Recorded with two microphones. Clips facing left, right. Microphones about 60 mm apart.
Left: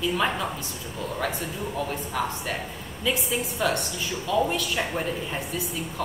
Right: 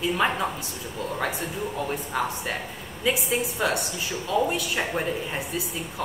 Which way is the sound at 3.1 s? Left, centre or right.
Centre.